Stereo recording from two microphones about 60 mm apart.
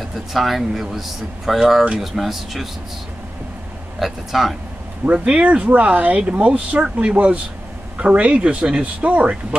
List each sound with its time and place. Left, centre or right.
0.3 s speech: centre
4.0 s speech: centre
5.0 s speech: right